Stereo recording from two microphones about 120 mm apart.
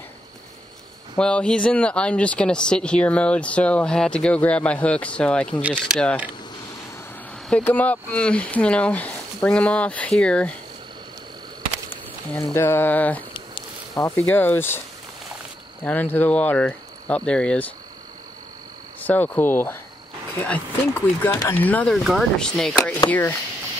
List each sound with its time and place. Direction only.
1.1 s speech: 10° left (ahead or behind)
5.6 s speech: 10° right (ahead or behind)
7.4 s speech: 10° left (ahead or behind)
11.9 s a sound: 15° left (ahead or behind)
12.5 s speech: 20° left (ahead or behind)
15.8 s speech: 15° left (ahead or behind)
18.9 s speech: 15° left (ahead or behind)
21.9 s speech: centre (ahead or behind); by 23.3 s 15° left (ahead or behind)